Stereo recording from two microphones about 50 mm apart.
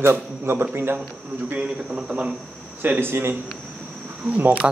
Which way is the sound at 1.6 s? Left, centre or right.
Right.